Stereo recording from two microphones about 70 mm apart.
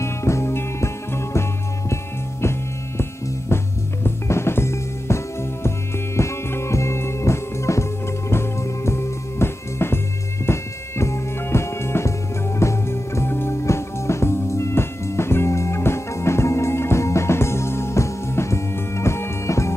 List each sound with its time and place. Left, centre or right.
0.0 s music: left
4.0 s music: left